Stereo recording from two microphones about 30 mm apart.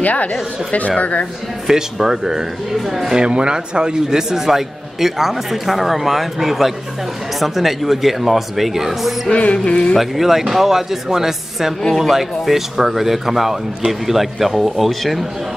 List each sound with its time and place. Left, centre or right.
0.0 s speech: left
1.7 s speech: centre
3.2 s speech: right
4.5 s speech: centre
9.3 s a sound: left
9.9 s speech: centre